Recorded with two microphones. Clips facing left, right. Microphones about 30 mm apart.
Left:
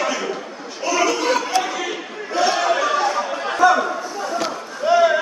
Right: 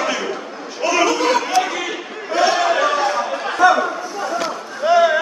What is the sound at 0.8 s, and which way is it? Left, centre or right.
Chatter, right.